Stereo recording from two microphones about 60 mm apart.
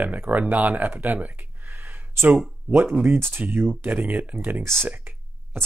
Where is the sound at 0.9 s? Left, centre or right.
Right.